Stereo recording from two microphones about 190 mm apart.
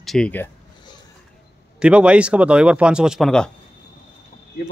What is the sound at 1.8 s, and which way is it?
Speech, 5° right (ahead or behind).